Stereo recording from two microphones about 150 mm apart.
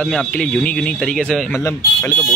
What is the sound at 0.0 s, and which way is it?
Speech, 5° left (ahead or behind).